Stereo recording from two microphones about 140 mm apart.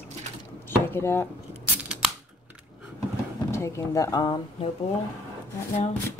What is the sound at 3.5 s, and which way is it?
Speech, 20° left (ahead or behind).